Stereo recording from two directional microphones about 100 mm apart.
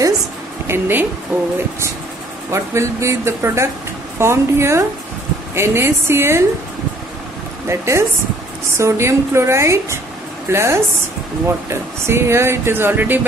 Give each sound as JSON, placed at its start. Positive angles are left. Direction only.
{"t": 0.7, "sound": "a woman's voice", "side_deg": -20}
{"t": 2.5, "sound": "speech", "side_deg": -30}
{"t": 7.6, "sound": "speech", "side_deg": -25}